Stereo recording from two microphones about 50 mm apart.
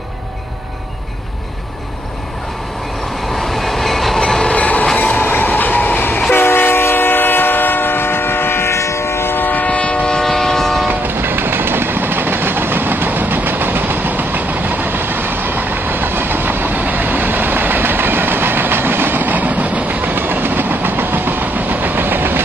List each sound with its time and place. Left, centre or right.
3.3 s train: centre
4.6 s train: left
8.7 s train: left
9.3 s train: left
9.7 s train: left; by 10.9 s centre
10.9 s train: right